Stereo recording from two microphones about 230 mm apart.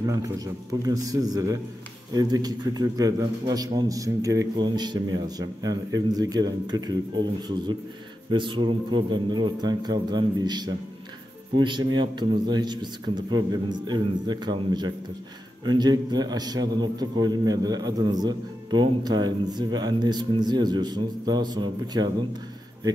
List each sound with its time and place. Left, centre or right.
0.0 s a man's voice: centre
8.3 s a man's voice: right